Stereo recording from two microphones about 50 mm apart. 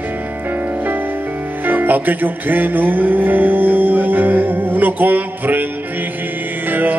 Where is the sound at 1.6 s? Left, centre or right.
Right.